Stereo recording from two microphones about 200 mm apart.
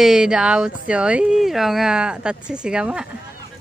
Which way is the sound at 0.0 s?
5° right (ahead or behind).